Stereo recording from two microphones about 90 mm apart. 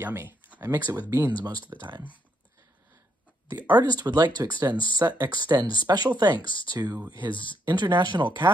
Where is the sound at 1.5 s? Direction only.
50° right (ahead or behind).